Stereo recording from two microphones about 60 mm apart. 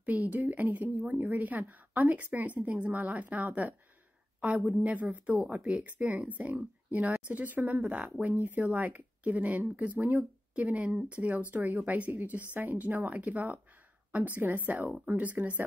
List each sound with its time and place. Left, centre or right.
0.0 s a woman's voice: right
4.8 s a woman's voice: right